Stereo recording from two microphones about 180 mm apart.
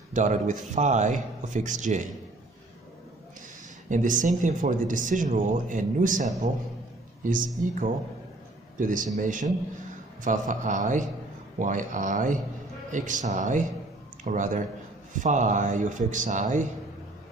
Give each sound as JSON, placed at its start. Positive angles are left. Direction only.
{"t": 0.1, "sound": "speech", "side_deg": -40}
{"t": 3.9, "sound": "speech", "side_deg": -45}